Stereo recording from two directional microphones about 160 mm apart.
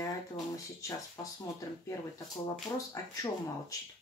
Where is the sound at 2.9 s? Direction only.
20° left (ahead or behind).